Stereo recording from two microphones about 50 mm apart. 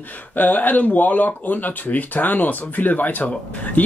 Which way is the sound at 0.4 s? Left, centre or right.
Left.